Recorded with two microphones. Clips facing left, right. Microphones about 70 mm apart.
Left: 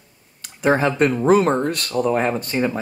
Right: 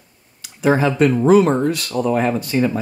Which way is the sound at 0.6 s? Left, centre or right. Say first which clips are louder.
Right 2 dB; left.